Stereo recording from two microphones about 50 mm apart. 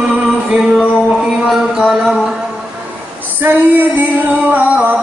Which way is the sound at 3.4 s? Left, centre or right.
Right.